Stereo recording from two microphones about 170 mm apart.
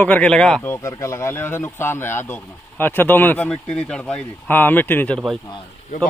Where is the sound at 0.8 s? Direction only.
15° left (ahead or behind).